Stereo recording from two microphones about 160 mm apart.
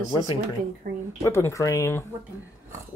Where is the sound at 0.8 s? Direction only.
60° right (ahead or behind).